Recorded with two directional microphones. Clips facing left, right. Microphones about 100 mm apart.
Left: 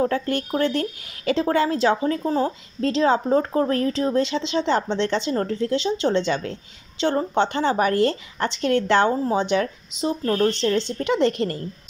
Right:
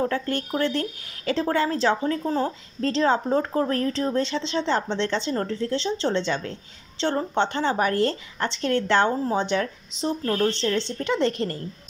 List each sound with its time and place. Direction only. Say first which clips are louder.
0.0 s speech: left 3 dB; 15° left (ahead or behind)
7.9 s speech: left 3 dB; 35° right (ahead or behind)
8.4 s speech: left 3 dB; 15° left (ahead or behind)